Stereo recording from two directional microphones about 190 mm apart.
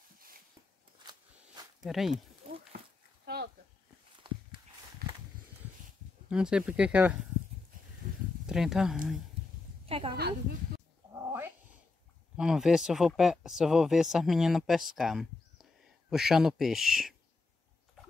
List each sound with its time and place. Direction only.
1.0 s a sound: 25° right (ahead or behind)
1.9 s speech: centre (ahead or behind)
4.2 s walk: 25° right (ahead or behind)
5.0 s a sound: 50° right (ahead or behind)
6.2 s speech: 5° right (ahead or behind)
8.5 s speech: 5° right (ahead or behind)
9.8 s a woman's voice: 30° right (ahead or behind)
10.1 s speech: 55° right (ahead or behind)
11.1 s cat: 10° right (ahead or behind)
12.4 s speech: 5° right (ahead or behind)